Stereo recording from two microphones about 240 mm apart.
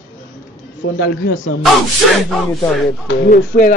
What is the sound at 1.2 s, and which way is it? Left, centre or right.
Speech, left.